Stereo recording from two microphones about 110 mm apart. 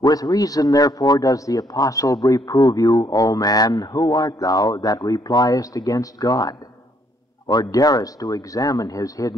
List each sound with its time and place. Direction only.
0.0 s a man's voice: 35° left (ahead or behind)